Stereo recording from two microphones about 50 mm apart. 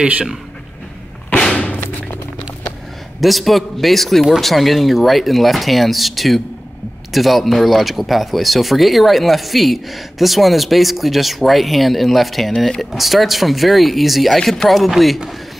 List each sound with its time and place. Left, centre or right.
1.5 s thump: left
3.2 s speech: centre